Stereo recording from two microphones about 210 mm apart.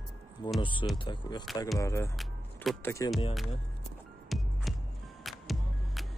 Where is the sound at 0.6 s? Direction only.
25° left (ahead or behind).